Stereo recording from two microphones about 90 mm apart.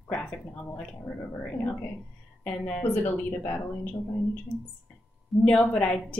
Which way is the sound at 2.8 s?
20° left (ahead or behind).